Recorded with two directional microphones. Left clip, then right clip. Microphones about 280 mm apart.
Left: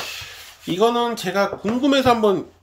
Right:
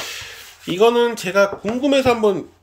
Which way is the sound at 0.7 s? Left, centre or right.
Centre.